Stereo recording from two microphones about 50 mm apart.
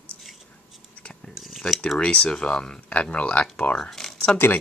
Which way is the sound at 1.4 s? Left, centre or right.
Centre.